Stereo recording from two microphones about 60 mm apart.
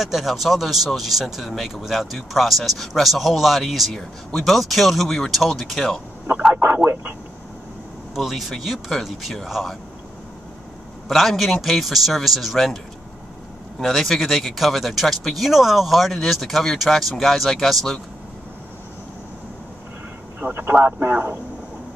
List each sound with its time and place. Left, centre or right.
0.0 s speech: centre
6.6 s a sound: right
8.1 s speech: centre
11.1 s speech: centre
13.7 s speech: centre
20.3 s a man's voice: right